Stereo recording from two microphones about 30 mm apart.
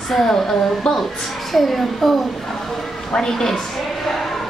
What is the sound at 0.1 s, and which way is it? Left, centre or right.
Speech, centre.